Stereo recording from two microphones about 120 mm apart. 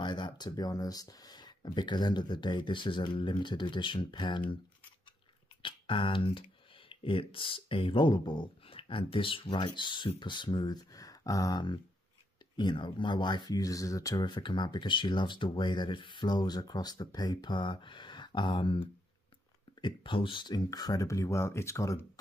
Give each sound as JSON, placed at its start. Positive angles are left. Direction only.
{"t": 0.0, "sound": "speech", "side_deg": 40}
{"t": 5.6, "sound": "speech", "side_deg": 45}
{"t": 19.8, "sound": "speech", "side_deg": 45}